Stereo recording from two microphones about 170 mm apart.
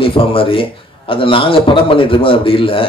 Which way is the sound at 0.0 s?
30° left (ahead or behind).